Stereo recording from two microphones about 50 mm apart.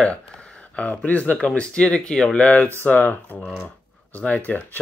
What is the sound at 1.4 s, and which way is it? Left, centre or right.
Speech, centre.